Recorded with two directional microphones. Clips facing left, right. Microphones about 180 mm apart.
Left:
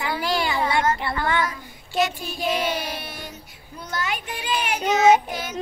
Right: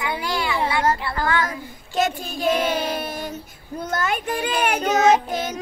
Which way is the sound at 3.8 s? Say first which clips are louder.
Right 5 dB; 50° right (ahead or behind).